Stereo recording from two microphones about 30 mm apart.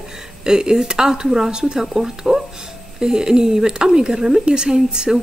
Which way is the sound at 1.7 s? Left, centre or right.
Centre.